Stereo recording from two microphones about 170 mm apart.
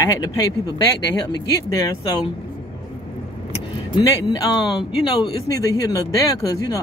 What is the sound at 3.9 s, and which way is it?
Speech, 25° left (ahead or behind).